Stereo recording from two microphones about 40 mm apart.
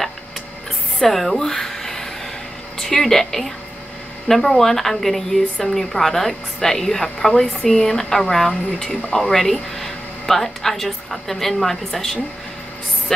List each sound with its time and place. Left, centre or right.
0.9 s a woman's voice: centre